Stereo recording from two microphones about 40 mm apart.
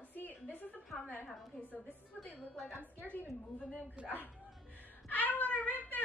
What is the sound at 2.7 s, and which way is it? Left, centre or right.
Speech, left.